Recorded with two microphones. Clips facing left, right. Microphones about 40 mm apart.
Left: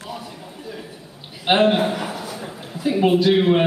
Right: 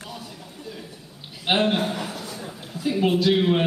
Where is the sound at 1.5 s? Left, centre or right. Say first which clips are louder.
Left 5 dB; centre.